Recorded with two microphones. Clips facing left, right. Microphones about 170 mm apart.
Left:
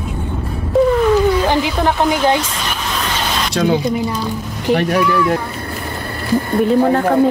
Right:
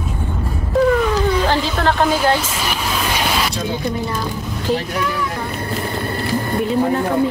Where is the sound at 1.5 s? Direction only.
15° left (ahead or behind).